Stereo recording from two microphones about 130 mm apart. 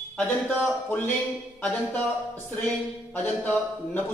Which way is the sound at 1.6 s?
10° left (ahead or behind).